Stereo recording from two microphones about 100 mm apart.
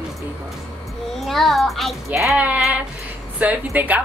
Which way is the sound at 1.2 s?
Centre (ahead or behind).